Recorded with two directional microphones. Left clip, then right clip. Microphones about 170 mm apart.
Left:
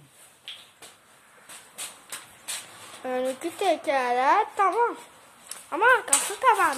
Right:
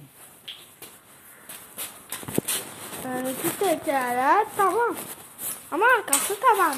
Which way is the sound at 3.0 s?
25° left (ahead or behind).